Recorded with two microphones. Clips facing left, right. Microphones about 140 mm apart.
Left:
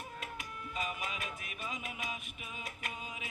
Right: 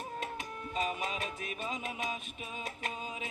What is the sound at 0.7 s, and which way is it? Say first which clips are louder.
Music: right 5 dB; 30° right (ahead or behind).